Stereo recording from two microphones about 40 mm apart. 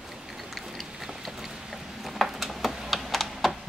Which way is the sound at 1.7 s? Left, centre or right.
Centre.